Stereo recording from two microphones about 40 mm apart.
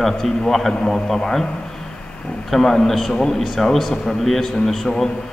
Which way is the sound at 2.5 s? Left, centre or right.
Centre.